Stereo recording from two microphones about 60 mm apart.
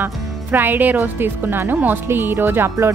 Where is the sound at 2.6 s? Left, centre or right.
Right.